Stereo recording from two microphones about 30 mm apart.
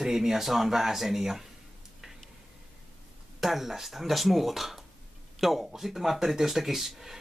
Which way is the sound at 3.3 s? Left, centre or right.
Centre.